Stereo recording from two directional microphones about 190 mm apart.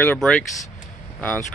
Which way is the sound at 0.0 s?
5° left (ahead or behind).